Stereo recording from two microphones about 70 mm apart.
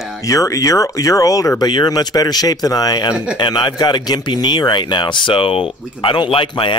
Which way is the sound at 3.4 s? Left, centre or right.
Left.